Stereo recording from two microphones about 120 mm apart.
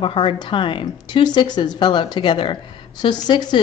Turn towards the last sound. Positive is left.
turn(degrees=35)  # may be behind; listen again after turning